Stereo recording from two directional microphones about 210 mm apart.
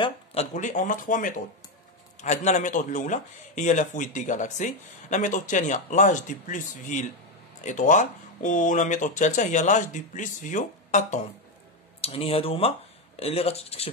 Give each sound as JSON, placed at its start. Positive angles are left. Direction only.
{"t": 0.0, "sound": "speech", "side_deg": 30}